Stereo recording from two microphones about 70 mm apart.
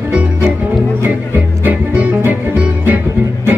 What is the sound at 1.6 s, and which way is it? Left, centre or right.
Music, right.